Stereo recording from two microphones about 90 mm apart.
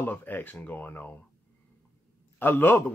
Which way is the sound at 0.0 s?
20° left (ahead or behind).